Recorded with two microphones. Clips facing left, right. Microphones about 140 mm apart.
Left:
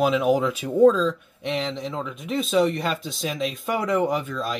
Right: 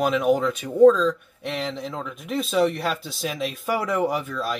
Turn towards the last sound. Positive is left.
turn(degrees=0)  # may be behind; listen again after turning